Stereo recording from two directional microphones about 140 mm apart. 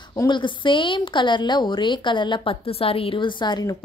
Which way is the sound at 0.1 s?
30° left (ahead or behind).